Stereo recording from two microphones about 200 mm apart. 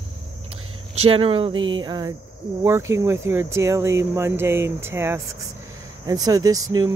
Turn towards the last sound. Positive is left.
turn(degrees=-20)  # may be behind; listen again after turning